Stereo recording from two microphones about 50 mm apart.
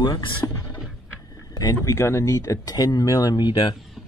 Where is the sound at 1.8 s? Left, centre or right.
Left.